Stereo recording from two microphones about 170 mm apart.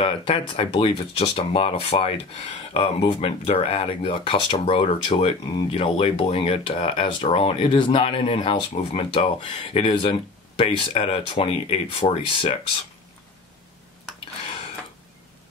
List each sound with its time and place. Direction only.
0.0 s speech: 30° left (ahead or behind)